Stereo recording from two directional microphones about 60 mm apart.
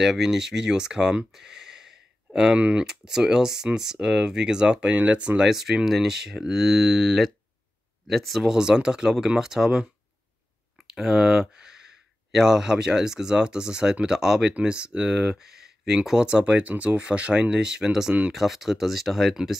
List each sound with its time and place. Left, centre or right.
0.0 s speech: centre
5.5 s speech: centre